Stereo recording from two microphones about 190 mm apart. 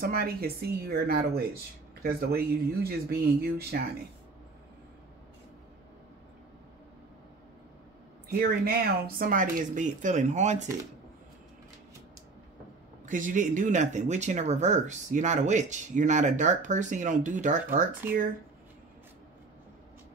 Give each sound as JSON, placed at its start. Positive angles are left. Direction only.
{"t": 0.0, "sound": "speech", "side_deg": -55}
{"t": 8.3, "sound": "speech", "side_deg": -50}
{"t": 13.0, "sound": "speech", "side_deg": -45}